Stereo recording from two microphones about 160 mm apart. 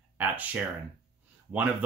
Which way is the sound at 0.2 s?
10° right (ahead or behind).